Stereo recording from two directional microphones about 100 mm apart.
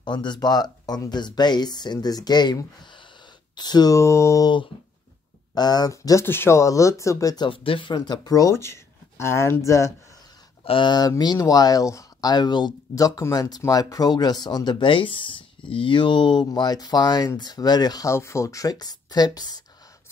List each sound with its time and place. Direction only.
0.0 s speech: 50° left (ahead or behind); by 4.5 s 30° left (ahead or behind)
5.5 s speech: 40° left (ahead or behind)
6.2 s speech: 25° left (ahead or behind)
7.4 s speech: 60° left (ahead or behind); by 9.9 s 30° left (ahead or behind)
10.6 s speech: 65° left (ahead or behind)
10.9 s speech: 45° left (ahead or behind)
18.1 s speech: 30° left (ahead or behind)